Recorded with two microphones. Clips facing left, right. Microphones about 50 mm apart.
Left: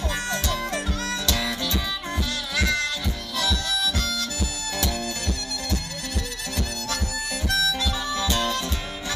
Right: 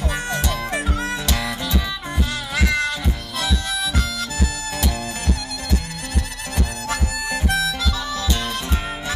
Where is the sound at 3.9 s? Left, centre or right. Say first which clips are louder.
Right 3 dB; centre.